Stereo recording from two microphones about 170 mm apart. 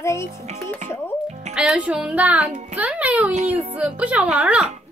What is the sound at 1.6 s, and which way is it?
A child's voice, 5° right (ahead or behind).